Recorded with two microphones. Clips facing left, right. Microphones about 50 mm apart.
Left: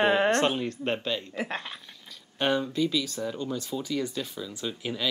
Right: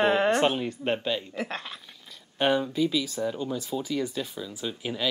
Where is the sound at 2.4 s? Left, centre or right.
Centre.